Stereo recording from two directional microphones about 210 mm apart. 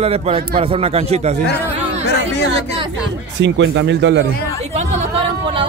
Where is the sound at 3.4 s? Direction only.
60° right (ahead or behind).